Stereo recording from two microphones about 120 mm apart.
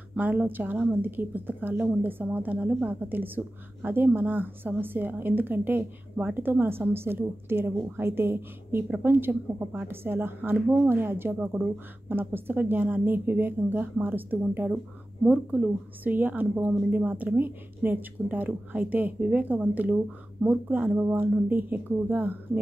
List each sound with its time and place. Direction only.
0.1 s a woman's voice: 15° right (ahead or behind)